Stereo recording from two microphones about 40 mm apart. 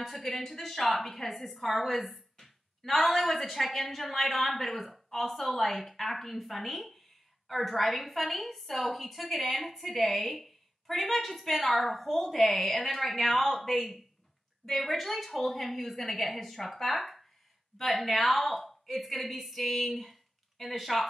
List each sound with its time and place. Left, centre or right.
0.0 s a woman's voice: centre